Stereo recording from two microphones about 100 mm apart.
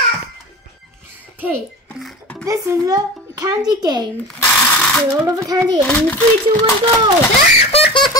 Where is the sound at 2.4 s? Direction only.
35° right (ahead or behind).